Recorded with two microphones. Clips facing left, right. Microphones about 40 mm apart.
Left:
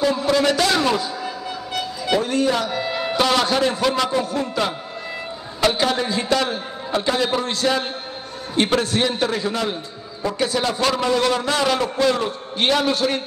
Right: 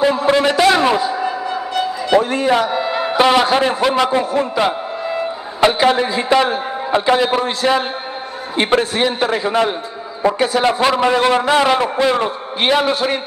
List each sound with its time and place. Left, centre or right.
0.0 s a sound: right
2.1 s a man's voice: right
3.2 s a man's voice: right